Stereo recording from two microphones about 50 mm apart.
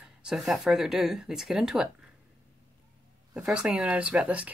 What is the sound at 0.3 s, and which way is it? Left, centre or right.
Speech, centre.